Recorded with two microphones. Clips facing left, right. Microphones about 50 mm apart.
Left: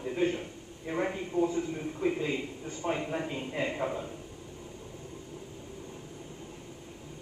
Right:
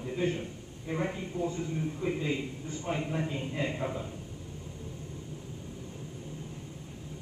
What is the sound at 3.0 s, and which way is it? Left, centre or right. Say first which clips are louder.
Speech: even; left.